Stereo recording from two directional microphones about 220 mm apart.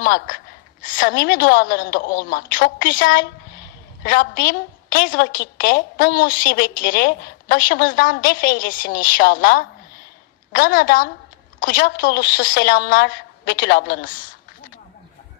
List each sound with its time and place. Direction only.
0.0 s a woman's voice: 40° left (ahead or behind)